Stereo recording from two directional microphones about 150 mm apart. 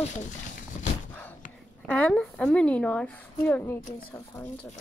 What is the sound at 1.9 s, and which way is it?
Speech, 5° left (ahead or behind).